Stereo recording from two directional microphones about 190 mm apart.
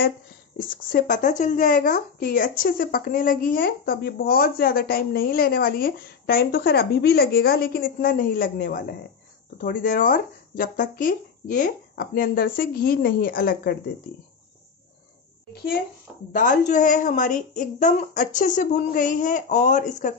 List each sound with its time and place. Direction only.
0.6 s speech: 50° left (ahead or behind)
16.3 s a woman's voice: 40° left (ahead or behind)